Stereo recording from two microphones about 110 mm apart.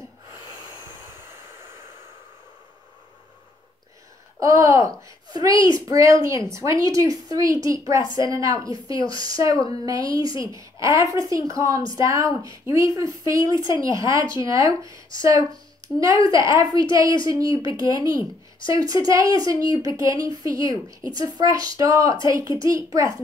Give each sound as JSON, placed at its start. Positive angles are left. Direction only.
{"t": 4.4, "sound": "a woman's voice", "side_deg": -30}